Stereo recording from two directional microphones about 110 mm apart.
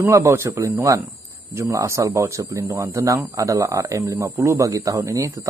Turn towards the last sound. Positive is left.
turn(degrees=-30)  # may be behind; listen again after turning